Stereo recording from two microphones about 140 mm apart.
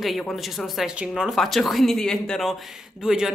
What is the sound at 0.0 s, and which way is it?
A woman's voice, centre (ahead or behind).